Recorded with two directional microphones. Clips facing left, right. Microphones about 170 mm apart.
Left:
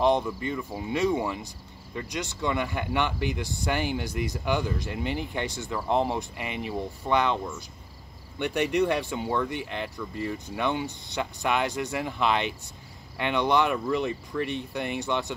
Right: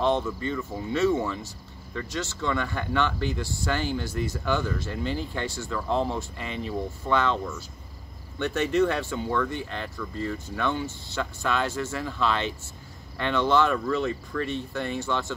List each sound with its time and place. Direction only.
0.0 s speech: 15° left (ahead or behind)